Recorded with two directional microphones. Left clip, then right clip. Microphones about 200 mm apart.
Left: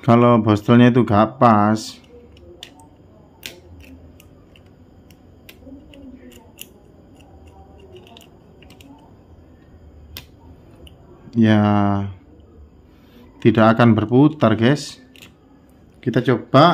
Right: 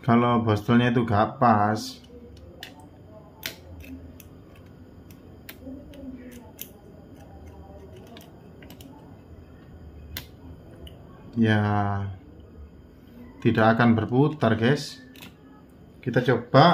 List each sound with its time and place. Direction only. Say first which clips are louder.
0.0 s speech: left 8 dB; 55° left (ahead or behind)
11.2 s speech: left 7 dB; 50° left (ahead or behind)
13.4 s speech: left 6 dB; 50° left (ahead or behind)
16.0 s speech: left 4 dB; 55° left (ahead or behind)